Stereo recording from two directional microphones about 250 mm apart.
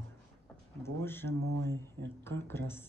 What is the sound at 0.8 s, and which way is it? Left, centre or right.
Speech, centre.